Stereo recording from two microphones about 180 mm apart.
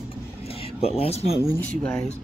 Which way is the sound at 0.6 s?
35° left (ahead or behind).